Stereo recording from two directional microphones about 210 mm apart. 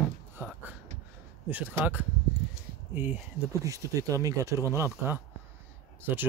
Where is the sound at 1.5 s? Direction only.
5° right (ahead or behind).